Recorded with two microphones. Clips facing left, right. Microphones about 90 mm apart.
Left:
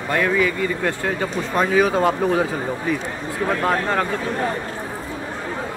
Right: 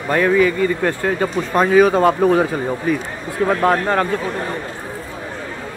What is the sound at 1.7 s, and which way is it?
Speech, 50° right (ahead or behind).